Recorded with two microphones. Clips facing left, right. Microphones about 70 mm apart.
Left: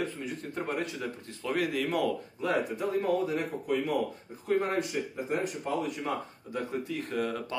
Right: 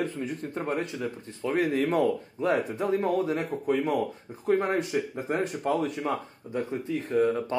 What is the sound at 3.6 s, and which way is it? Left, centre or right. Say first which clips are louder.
Speech: right 4 dB; right.